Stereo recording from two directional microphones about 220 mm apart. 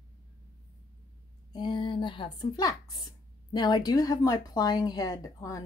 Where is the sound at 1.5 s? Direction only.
20° left (ahead or behind).